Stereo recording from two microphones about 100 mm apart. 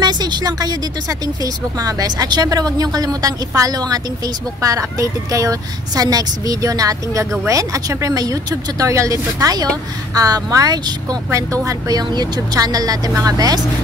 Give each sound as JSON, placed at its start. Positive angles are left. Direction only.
{"t": 0.0, "sound": "speech", "side_deg": -45}